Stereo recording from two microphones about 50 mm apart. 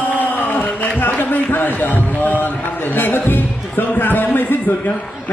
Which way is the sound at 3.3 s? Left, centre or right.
Left.